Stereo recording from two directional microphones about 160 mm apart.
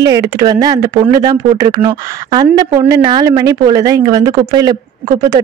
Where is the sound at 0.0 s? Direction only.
20° right (ahead or behind).